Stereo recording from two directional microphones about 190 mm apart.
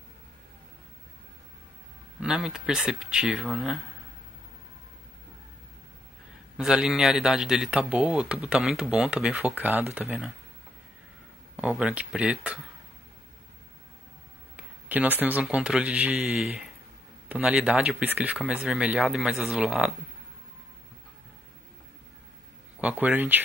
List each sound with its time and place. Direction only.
2.1 s speech: 5° right (ahead or behind)
6.5 s a man's voice: 5° right (ahead or behind)
11.5 s speech: 5° right (ahead or behind)
14.6 s a man's voice: 10° right (ahead or behind)
22.8 s a man's voice: 5° right (ahead or behind)